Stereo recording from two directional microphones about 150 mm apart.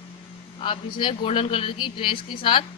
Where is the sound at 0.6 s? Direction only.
35° left (ahead or behind).